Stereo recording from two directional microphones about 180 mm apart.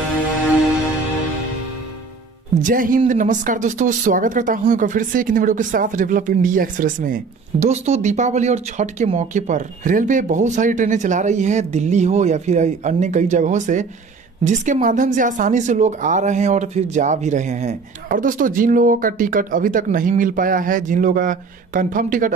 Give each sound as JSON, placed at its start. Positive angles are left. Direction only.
{"t": 2.6, "sound": "speech", "side_deg": -50}